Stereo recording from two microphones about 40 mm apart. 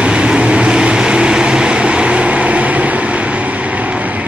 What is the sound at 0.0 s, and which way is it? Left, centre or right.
Vehicle, right.